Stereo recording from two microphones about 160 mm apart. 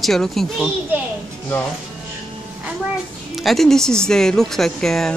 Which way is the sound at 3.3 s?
Centre (ahead or behind).